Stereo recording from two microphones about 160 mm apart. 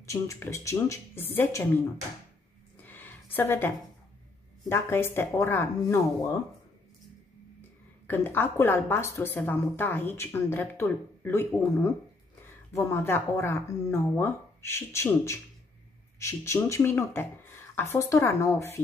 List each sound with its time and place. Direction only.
0.0 s a woman's voice: 20° left (ahead or behind)
2.8 s a sound: 10° left (ahead or behind)
4.6 s a woman's voice: 15° left (ahead or behind)
8.1 s a woman's voice: 15° left (ahead or behind)